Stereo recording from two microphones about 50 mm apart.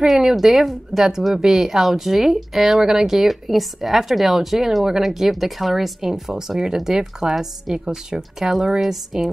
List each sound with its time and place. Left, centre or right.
0.0 s a woman's voice: centre